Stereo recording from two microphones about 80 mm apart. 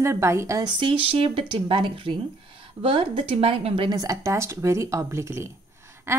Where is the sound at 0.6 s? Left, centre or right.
Right.